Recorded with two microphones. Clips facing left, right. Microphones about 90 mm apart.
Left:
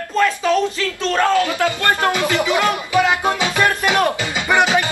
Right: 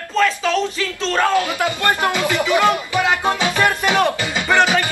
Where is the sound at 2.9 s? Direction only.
20° left (ahead or behind).